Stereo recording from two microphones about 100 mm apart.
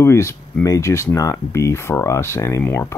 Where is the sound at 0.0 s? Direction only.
30° left (ahead or behind).